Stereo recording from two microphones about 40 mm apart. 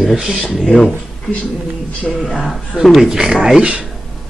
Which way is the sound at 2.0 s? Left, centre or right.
Centre.